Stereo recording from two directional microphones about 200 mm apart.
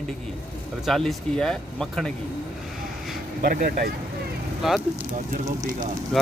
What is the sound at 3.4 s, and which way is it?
Speech, 45° right (ahead or behind).